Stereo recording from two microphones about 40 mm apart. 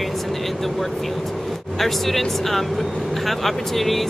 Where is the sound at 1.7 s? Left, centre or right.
Centre.